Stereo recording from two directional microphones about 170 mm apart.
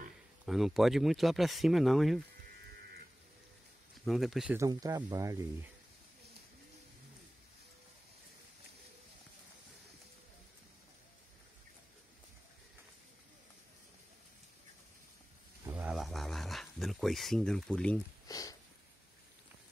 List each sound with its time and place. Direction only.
0.5 s speech: centre (ahead or behind)
4.0 s speech: centre (ahead or behind)
4.6 s speech: 20° right (ahead or behind)
15.7 s a sound: 5° right (ahead or behind)
18.2 s sniff: 20° left (ahead or behind)